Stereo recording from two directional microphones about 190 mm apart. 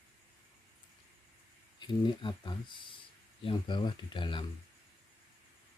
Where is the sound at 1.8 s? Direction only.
25° left (ahead or behind).